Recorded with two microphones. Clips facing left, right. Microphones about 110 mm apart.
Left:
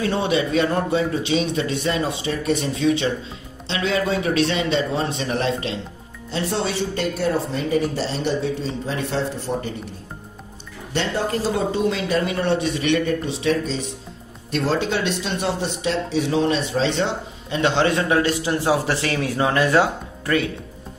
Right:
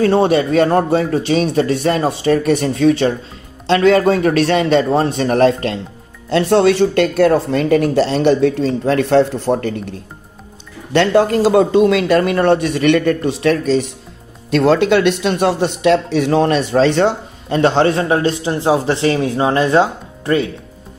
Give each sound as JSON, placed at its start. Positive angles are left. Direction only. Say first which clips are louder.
{"t": 0.0, "sound": "a man's voice", "louder": "right 8 dB", "side_deg": -45}
{"t": 6.3, "sound": "speech", "louder": "right 12 dB", "side_deg": -70}
{"t": 10.9, "sound": "speech", "louder": "right 11 dB", "side_deg": -75}
{"t": 17.6, "sound": "a man's voice", "louder": "right 6 dB", "side_deg": -35}